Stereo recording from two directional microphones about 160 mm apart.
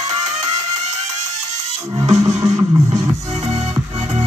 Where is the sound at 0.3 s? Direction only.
45° right (ahead or behind).